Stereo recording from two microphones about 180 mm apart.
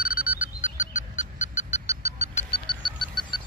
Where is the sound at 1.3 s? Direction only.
90° left.